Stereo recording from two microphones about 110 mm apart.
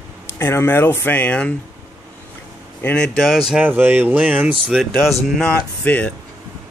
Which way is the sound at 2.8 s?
10° left (ahead or behind).